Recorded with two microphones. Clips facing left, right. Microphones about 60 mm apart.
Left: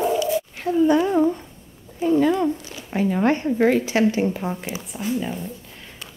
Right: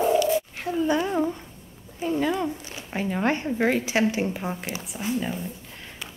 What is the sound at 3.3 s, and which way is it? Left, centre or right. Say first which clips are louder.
A woman's voice: left 4 dB; centre.